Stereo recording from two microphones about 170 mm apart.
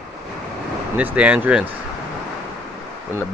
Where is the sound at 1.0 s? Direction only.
10° right (ahead or behind).